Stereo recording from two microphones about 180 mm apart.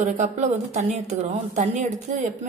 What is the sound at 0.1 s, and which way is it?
A woman's voice, 45° right (ahead or behind).